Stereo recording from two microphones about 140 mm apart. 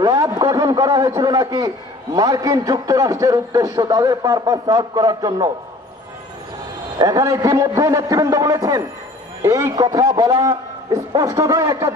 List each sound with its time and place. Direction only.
0.0 s a man's voice: 25° right (ahead or behind)
7.0 s a man's voice: 25° right (ahead or behind)